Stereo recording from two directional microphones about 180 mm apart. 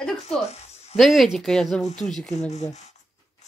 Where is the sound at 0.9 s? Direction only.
Centre (ahead or behind).